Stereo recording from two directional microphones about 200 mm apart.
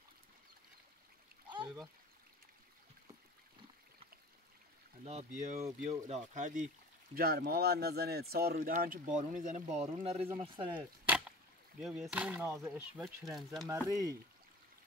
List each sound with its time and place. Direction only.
1.5 s trickle: 25° right (ahead or behind)
5.0 s speech: 35° right (ahead or behind)
7.2 s speech: 50° right (ahead or behind); by 10.8 s 25° right (ahead or behind)
10.8 s chop: 5° right (ahead or behind)
11.8 s speech: 5° right (ahead or behind)